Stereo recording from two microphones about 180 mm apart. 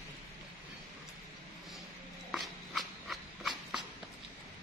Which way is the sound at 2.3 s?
Centre (ahead or behind).